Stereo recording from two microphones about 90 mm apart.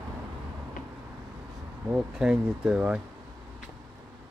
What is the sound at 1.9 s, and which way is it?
Speech, 10° right (ahead or behind).